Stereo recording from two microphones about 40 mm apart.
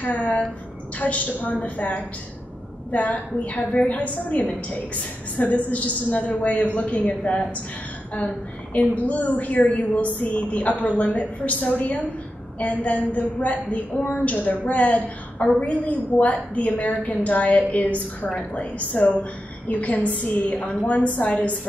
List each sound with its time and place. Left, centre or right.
0.0 s a woman's voice: left
8.7 s a woman's voice: left